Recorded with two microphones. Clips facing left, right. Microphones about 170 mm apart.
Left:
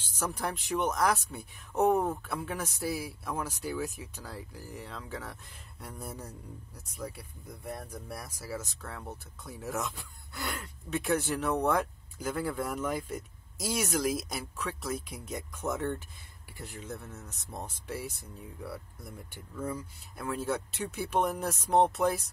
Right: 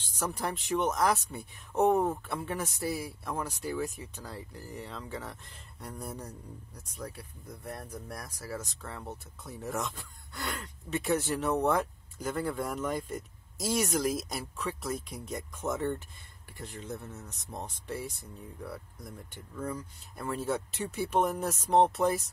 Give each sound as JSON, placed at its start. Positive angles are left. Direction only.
{"t": 0.2, "sound": "speech", "side_deg": 0}